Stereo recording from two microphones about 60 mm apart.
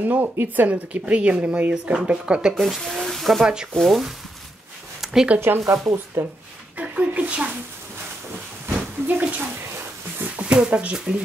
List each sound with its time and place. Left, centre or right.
0.0 s speech: right
0.7 s speech: right
2.5 s speech: centre
5.0 s a sound: centre
5.7 s speech: right
6.8 s a sound: right
9.0 s bathtub: right
10.4 s speech: centre